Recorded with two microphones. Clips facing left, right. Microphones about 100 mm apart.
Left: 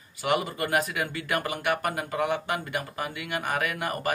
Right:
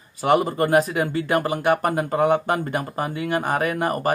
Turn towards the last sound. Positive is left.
turn(degrees=-35)  # may be behind; listen again after turning